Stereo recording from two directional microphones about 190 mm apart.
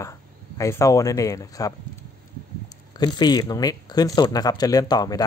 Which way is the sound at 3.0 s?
20° left (ahead or behind).